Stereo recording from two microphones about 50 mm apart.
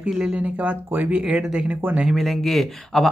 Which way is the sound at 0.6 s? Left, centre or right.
Right.